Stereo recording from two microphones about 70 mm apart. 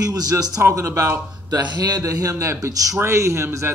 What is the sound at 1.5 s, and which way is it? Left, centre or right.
Speech, right.